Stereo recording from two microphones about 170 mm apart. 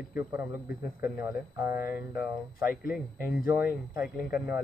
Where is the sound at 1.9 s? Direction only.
10° right (ahead or behind).